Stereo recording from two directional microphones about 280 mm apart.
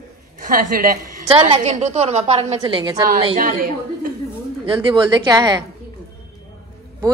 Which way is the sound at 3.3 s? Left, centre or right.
Right.